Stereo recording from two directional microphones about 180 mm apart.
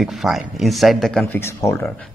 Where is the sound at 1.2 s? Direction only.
15° left (ahead or behind).